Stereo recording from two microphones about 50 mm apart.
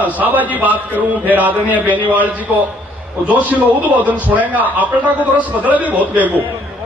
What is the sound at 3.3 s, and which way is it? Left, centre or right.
A man's voice, right.